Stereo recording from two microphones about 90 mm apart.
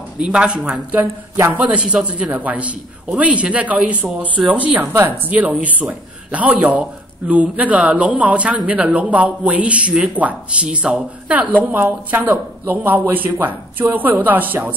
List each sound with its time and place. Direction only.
0.2 s a man's voice: 10° right (ahead or behind)
0.9 s speech: 25° right (ahead or behind)
1.6 s a man's voice: 15° right (ahead or behind)
11.7 s speech: 25° right (ahead or behind)